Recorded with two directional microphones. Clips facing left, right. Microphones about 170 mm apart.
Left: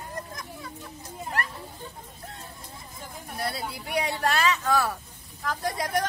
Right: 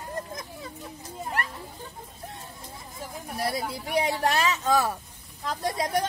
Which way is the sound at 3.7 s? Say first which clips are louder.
Right 3 dB; 20° right (ahead or behind).